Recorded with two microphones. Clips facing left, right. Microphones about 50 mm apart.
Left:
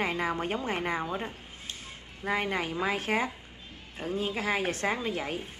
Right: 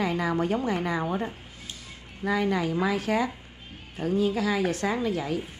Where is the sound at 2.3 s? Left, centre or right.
Left.